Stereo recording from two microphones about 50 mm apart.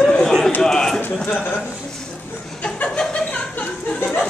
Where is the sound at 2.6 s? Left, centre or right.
Left.